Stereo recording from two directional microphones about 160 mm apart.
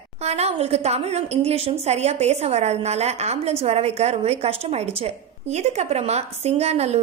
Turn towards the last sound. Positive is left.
turn(degrees=-40)  # may be behind; listen again after turning